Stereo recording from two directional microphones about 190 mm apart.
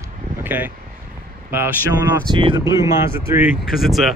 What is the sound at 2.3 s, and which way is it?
Speech, 25° right (ahead or behind).